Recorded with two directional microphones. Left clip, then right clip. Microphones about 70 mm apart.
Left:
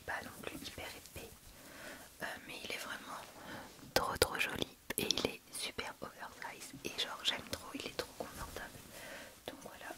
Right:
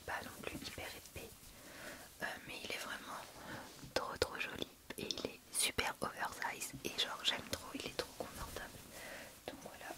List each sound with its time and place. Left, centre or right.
0.0 s whispering: centre
3.9 s whispering: left
5.6 s whispering: right
6.8 s whispering: centre